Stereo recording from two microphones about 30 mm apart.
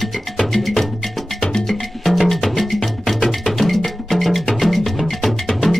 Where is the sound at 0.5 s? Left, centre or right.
Centre.